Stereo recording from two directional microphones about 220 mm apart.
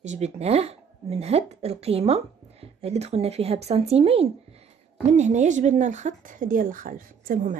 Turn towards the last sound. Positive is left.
turn(degrees=-35)  # may be behind; listen again after turning